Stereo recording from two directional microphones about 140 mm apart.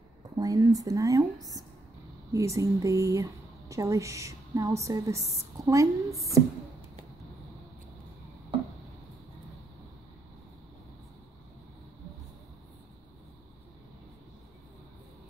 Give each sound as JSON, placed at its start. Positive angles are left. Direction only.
{"t": 0.4, "sound": "speech", "side_deg": -25}